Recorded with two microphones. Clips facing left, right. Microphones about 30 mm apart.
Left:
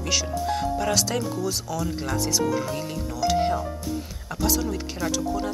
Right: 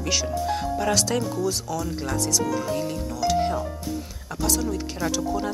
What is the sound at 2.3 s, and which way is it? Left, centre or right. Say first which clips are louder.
Speech: left 1 dB; centre.